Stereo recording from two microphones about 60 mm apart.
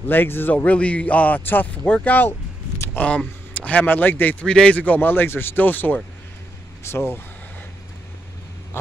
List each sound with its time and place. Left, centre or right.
0.0 s a man's voice: left
3.5 s speech: left
4.5 s a man's voice: centre
6.8 s speech: left